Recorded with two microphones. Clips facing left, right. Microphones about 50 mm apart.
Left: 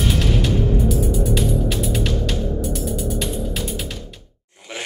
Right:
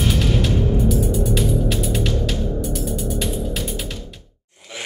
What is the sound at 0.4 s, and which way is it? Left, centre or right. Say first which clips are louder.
Music: even; centre.